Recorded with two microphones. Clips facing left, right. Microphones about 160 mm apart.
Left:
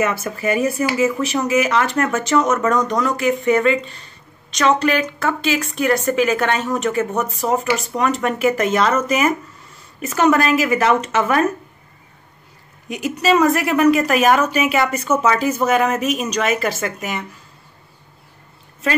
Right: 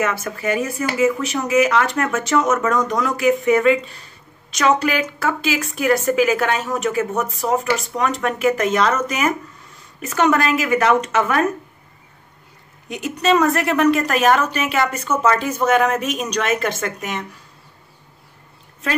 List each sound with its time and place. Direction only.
0.0 s a woman's voice: 10° left (ahead or behind)
12.8 s a woman's voice: 5° left (ahead or behind)